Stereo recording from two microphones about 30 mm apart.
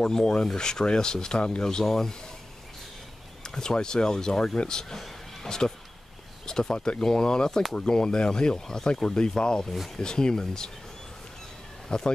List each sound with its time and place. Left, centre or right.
0.0 s speech: left
1.9 s speech: centre
3.4 s speech: left
11.9 s speech: left